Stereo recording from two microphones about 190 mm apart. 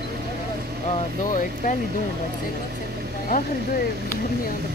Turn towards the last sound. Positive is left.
turn(degrees=50)  # may be behind; listen again after turning